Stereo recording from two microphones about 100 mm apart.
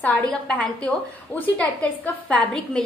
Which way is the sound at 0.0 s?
15° left (ahead or behind).